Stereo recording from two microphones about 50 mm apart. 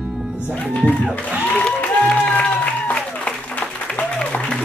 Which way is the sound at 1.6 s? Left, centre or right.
Left.